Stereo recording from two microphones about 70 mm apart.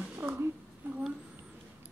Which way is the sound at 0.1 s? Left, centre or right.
Right.